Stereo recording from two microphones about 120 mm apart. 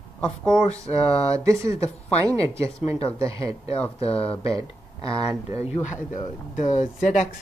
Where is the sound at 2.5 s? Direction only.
55° left (ahead or behind).